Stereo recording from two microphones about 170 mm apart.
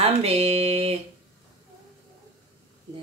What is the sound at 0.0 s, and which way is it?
Mantra, 35° right (ahead or behind).